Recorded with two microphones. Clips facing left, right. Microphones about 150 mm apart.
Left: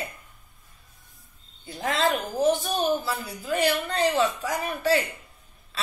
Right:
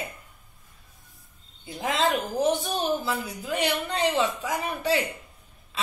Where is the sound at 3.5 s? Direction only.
20° right (ahead or behind).